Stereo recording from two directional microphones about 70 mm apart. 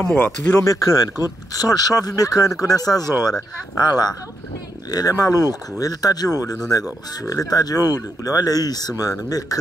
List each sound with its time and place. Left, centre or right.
0.2 s speech: left
0.7 s speech: left
4.9 s speech: left